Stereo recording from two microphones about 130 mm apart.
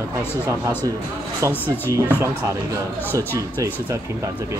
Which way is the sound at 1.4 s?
25° right (ahead or behind).